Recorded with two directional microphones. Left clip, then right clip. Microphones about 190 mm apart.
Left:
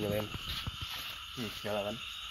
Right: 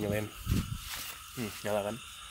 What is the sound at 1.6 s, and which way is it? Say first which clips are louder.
Speech: right 3 dB; 25° right (ahead or behind).